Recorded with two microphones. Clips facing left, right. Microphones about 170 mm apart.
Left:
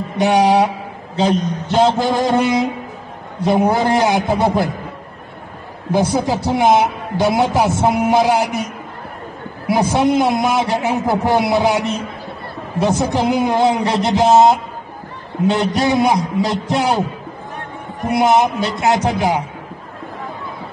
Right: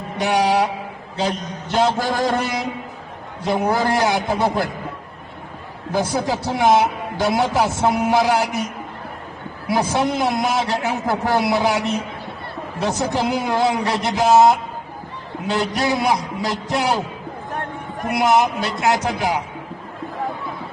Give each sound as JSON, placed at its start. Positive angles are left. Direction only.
{"t": 0.2, "sound": "a man's voice", "side_deg": 20}
{"t": 5.9, "sound": "a man's voice", "side_deg": 20}
{"t": 9.7, "sound": "a man's voice", "side_deg": 20}
{"t": 18.0, "sound": "a man's voice", "side_deg": 20}